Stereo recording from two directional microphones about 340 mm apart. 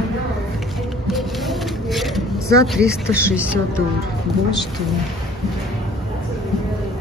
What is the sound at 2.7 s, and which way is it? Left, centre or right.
Speech, centre.